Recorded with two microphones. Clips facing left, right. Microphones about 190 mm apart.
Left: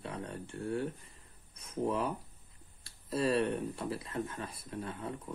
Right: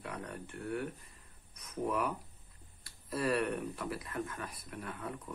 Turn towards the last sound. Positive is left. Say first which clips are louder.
# left 3 dB
turn(degrees=25)  # may be behind; listen again after turning